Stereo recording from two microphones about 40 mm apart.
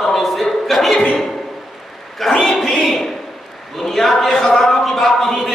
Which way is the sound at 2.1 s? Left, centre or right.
Centre.